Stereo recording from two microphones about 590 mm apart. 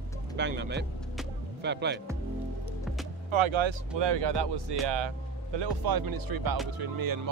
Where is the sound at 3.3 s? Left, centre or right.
Right.